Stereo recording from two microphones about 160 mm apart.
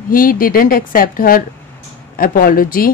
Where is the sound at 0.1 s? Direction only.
60° left (ahead or behind).